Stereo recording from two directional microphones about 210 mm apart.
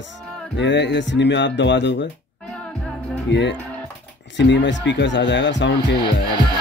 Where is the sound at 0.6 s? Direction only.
60° left (ahead or behind).